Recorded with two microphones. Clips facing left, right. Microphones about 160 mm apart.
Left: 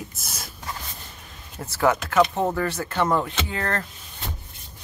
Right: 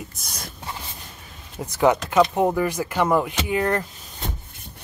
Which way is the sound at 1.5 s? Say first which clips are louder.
Right 3 dB; 15° right (ahead or behind).